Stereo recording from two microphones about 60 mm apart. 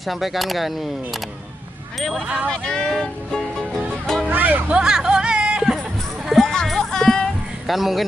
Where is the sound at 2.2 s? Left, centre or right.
Right.